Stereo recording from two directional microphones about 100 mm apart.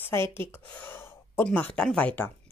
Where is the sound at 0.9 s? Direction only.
25° left (ahead or behind).